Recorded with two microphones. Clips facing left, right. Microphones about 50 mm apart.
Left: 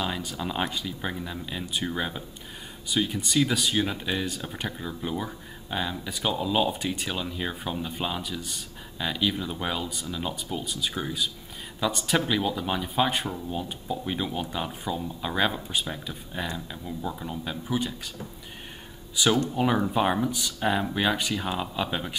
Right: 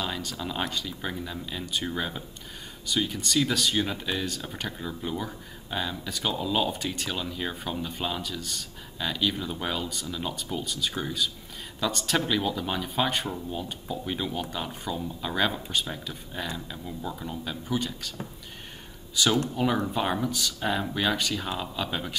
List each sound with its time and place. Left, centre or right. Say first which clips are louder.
0.0 s speech: left 2 dB; centre
19.2 s speech: left 1 dB; centre